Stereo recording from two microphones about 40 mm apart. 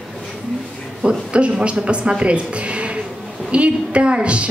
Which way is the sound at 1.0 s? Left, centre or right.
Right.